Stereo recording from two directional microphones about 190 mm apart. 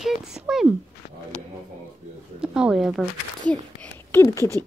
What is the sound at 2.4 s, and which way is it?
Speech, 5° right (ahead or behind).